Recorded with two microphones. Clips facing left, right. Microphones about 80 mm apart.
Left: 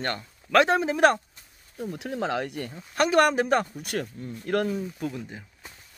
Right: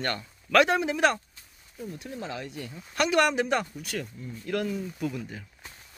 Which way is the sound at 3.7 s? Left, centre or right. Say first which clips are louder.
Left 4 dB; left.